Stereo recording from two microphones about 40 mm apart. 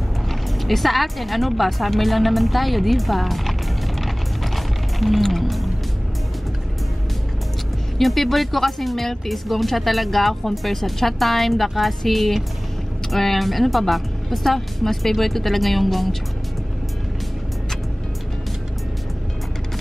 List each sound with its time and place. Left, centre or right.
0.3 s speech: centre
4.6 s music: centre
8.0 s speech: centre